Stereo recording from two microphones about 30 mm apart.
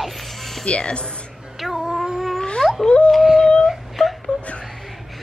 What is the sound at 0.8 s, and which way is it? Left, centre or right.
Speech, left.